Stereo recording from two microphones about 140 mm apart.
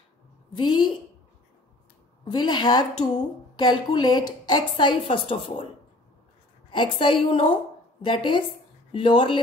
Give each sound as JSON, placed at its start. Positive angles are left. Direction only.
{"t": 0.6, "sound": "a woman's voice", "side_deg": 30}
{"t": 2.2, "sound": "a woman's voice", "side_deg": 35}
{"t": 6.7, "sound": "a woman's voice", "side_deg": 35}